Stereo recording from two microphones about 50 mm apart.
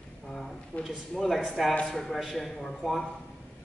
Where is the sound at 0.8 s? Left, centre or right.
Centre.